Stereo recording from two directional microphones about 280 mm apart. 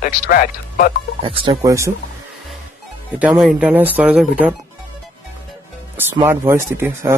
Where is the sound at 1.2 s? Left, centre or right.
Centre.